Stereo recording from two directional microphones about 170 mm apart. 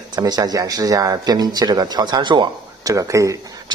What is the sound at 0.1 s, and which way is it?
Speech, 20° right (ahead or behind).